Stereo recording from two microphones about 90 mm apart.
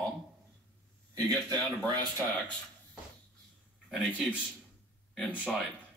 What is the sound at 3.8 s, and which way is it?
Speech, 10° right (ahead or behind).